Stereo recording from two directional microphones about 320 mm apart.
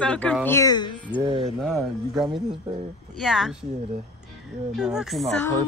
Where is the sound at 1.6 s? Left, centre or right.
Centre.